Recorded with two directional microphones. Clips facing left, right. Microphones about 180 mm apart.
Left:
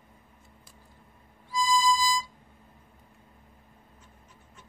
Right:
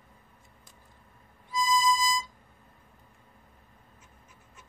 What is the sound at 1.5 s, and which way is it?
Music, 20° right (ahead or behind).